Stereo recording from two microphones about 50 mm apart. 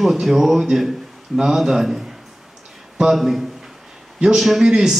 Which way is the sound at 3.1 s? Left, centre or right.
Centre.